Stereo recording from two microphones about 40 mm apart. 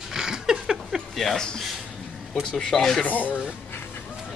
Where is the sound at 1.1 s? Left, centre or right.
Centre.